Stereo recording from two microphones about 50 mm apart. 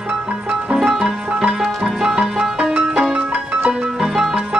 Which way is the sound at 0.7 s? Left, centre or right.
Centre.